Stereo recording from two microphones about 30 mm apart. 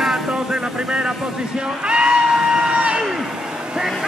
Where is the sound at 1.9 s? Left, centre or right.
Right.